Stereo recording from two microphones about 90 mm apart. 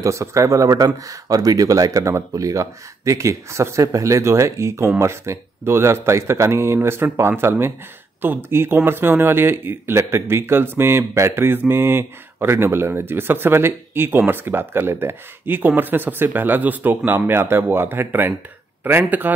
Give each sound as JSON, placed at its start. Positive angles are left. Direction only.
{"t": 0.0, "sound": "speech", "side_deg": -35}